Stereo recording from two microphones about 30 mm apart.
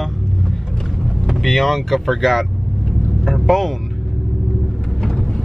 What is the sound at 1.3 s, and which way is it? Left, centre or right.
Speech, centre.